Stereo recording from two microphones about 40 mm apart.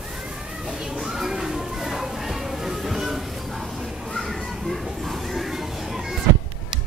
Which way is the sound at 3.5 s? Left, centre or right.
Centre.